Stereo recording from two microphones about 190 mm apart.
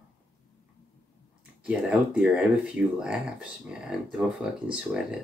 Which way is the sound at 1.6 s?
5° right (ahead or behind).